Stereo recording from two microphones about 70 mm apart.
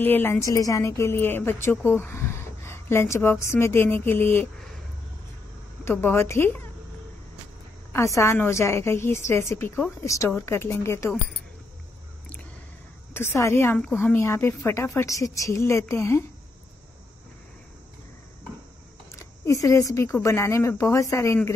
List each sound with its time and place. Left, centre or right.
0.0 s a woman's voice: left
0.4 s a woman's voice: left
5.9 s a woman's voice: left
7.9 s a woman's voice: left
10.0 s speech: left
10.3 s a woman's voice: left
13.1 s a woman's voice: left
13.8 s a woman's voice: left
19.1 s speech: left